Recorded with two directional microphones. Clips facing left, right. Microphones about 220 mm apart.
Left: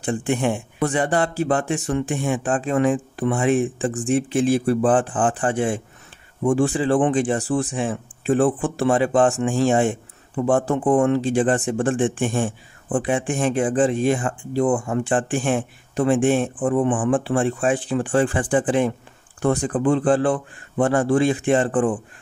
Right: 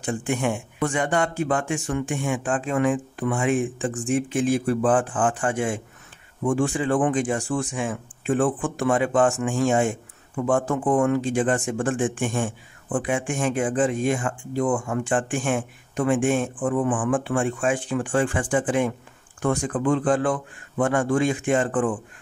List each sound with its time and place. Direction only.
0.0 s speech: 30° left (ahead or behind)